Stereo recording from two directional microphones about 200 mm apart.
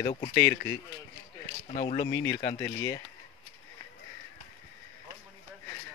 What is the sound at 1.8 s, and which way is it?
Speech, 35° left (ahead or behind).